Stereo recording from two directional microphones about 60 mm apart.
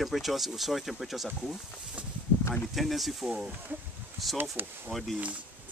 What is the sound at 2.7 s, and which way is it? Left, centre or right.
Speech, centre.